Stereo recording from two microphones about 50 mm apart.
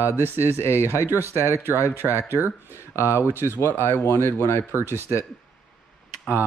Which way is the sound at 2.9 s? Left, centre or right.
Left.